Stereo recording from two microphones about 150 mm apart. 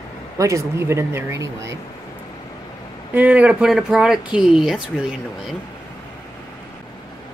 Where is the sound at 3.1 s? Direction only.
10° right (ahead or behind).